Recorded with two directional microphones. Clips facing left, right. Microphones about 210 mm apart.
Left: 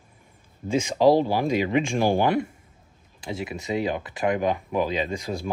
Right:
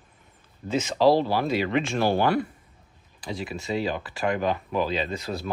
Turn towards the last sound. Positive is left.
turn(degrees=15)  # may be behind; listen again after turning